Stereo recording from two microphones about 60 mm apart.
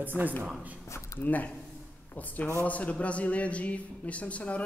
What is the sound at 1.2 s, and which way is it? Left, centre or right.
Speech, left.